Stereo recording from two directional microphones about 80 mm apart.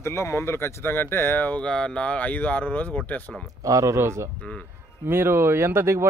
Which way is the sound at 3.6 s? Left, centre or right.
Right.